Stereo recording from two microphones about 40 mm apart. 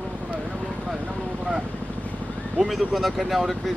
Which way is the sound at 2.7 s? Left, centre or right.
Centre.